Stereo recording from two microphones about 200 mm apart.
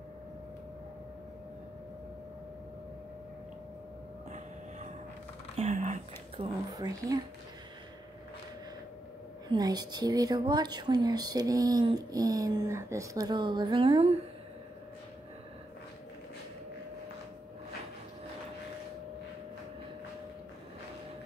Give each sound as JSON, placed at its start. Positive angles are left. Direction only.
{"t": 4.3, "sound": "a sound", "side_deg": -35}
{"t": 5.6, "sound": "speech", "side_deg": -35}
{"t": 9.5, "sound": "speech", "side_deg": -20}